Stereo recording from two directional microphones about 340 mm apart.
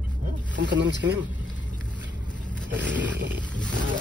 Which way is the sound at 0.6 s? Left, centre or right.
Right.